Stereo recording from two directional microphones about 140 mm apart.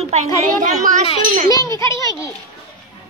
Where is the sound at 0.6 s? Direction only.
60° right (ahead or behind).